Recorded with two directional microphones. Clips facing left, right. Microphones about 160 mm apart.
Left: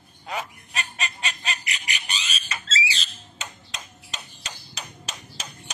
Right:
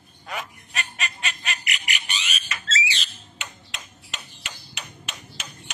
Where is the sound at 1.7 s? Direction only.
35° left (ahead or behind).